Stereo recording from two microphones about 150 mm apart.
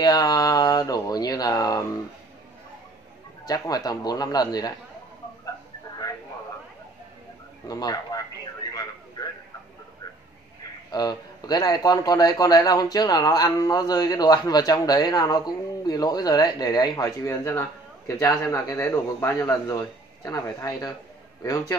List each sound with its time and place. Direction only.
0.0 s a man's voice: 25° left (ahead or behind)
3.4 s a man's voice: 25° left (ahead or behind)
7.6 s a man's voice: 25° left (ahead or behind)
10.9 s a man's voice: 25° left (ahead or behind)